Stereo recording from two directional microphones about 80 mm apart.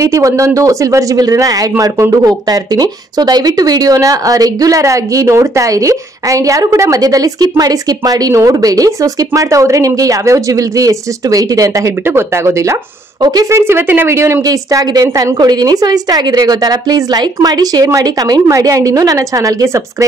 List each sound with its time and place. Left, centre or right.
0.0 s speech: right
12.1 s speech: right
13.2 s a woman's voice: right
13.5 s speech: right
14.4 s speech: right
15.3 s a woman's voice: right